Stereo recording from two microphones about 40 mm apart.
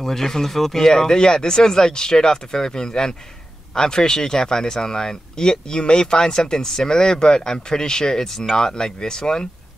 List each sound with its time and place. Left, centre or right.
0.0 s speech: centre
8.5 s speech: centre